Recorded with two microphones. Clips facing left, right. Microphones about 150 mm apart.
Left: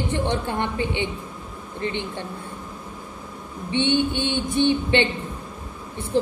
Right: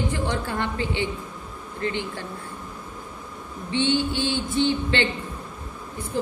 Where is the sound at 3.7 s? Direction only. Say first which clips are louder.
Left 2 dB; 20° left (ahead or behind).